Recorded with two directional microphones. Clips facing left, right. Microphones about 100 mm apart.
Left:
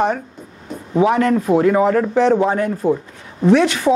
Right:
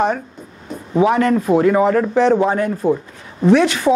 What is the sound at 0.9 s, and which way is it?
A man's voice, 35° right (ahead or behind).